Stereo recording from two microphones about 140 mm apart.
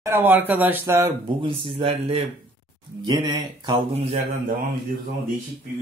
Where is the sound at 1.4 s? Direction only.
40° right (ahead or behind).